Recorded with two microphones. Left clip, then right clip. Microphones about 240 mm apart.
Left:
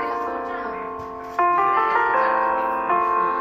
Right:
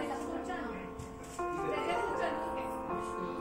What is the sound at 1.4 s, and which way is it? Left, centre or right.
Music, left.